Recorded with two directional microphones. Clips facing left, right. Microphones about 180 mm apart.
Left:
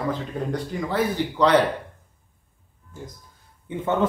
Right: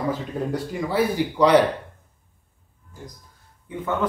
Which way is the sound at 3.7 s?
25° left (ahead or behind).